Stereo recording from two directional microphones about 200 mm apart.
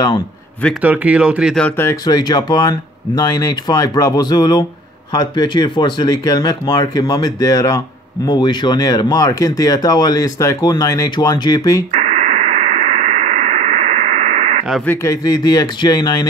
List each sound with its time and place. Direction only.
0.8 s speech: 5° right (ahead or behind); by 11.8 s 20° left (ahead or behind)
11.9 s radio: 35° right (ahead or behind)
14.9 s speech: 15° left (ahead or behind)